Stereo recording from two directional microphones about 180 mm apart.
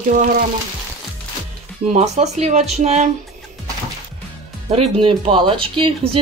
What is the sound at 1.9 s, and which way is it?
Speech, 40° right (ahead or behind).